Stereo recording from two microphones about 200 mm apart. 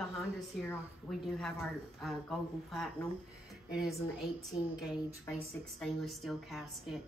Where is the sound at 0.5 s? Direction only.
Centre (ahead or behind).